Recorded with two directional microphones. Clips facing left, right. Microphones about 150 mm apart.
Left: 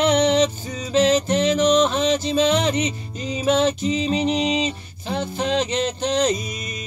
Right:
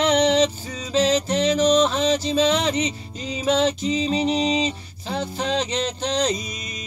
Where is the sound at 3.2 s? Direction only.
45° left (ahead or behind).